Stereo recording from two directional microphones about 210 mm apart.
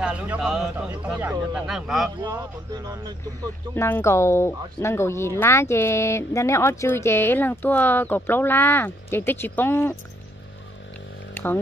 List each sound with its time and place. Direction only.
0.0 s speech: 5° right (ahead or behind)
2.2 s speech: 20° right (ahead or behind)
3.7 s speech: 10° left (ahead or behind)
11.3 s speech: 10° left (ahead or behind)